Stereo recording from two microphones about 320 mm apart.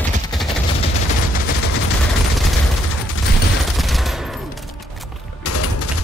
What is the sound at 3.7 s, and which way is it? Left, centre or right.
Fusillade, centre.